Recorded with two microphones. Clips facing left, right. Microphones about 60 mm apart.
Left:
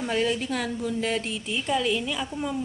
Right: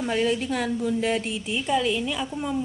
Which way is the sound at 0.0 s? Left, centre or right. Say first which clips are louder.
Right 2 dB; centre.